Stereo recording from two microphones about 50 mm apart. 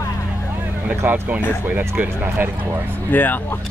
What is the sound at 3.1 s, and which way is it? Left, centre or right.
Speech, left.